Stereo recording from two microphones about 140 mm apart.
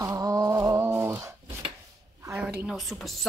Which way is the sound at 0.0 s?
20° right (ahead or behind).